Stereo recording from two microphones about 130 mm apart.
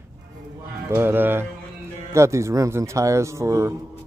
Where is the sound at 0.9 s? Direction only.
20° right (ahead or behind).